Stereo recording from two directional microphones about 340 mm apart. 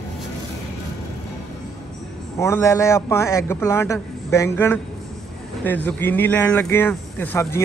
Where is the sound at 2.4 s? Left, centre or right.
Centre.